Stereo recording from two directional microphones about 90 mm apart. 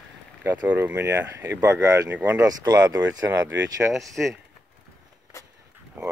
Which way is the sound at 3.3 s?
30° right (ahead or behind).